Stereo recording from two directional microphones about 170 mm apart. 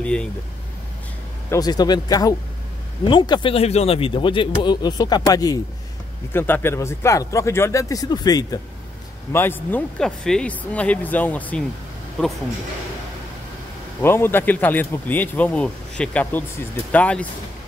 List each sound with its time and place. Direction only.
0.0 s speech: 5° left (ahead or behind)
1.5 s speech: 20° left (ahead or behind)
14.0 s speech: 15° left (ahead or behind)